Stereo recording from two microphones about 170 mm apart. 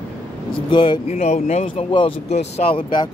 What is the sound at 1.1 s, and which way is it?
Speech, 40° left (ahead or behind).